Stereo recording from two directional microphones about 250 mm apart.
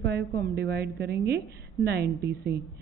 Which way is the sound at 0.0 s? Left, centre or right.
Right.